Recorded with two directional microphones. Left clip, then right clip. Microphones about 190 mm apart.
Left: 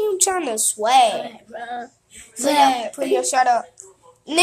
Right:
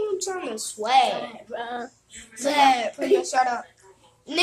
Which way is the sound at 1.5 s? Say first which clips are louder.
Even; 10° right (ahead or behind).